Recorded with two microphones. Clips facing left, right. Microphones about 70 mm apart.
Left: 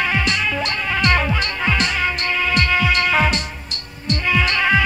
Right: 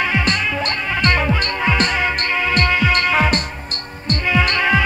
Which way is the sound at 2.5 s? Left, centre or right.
Right.